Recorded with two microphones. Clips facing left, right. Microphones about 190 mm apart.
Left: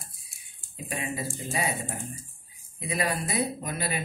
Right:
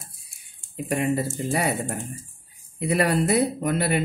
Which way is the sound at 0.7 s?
65° right (ahead or behind).